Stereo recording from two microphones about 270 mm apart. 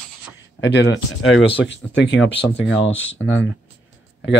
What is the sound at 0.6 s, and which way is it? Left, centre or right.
Speech, left.